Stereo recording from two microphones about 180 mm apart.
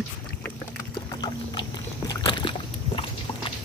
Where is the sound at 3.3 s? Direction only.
30° left (ahead or behind).